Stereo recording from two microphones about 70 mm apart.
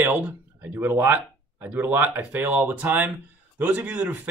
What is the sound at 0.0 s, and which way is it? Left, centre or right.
Speech, right.